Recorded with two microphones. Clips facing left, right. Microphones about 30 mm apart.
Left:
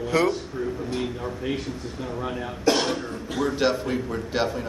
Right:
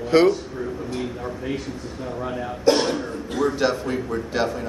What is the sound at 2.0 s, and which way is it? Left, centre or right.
Speech, centre.